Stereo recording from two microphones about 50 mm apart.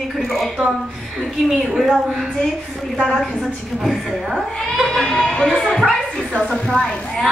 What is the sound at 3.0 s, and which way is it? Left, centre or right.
Speech, centre.